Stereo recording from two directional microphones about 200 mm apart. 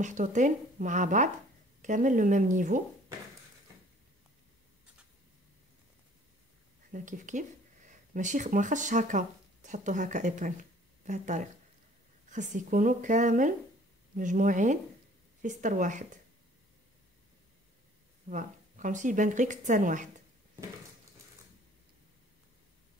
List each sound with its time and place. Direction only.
0.0 s speech: 40° right (ahead or behind)
6.9 s speech: 40° right (ahead or behind)
18.3 s speech: 40° right (ahead or behind)